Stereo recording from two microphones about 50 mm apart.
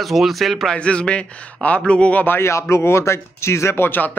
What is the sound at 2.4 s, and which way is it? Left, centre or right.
Speech, left.